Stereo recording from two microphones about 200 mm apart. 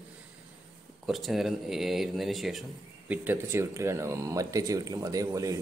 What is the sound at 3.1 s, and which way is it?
A man's voice, 10° right (ahead or behind).